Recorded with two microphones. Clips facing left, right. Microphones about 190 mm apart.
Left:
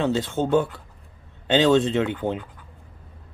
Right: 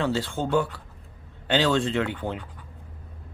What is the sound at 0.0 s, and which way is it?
Speech, 20° left (ahead or behind).